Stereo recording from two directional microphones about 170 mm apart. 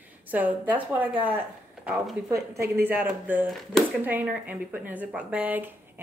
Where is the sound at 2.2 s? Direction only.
20° right (ahead or behind).